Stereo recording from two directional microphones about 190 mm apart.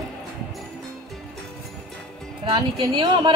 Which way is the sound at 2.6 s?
25° right (ahead or behind).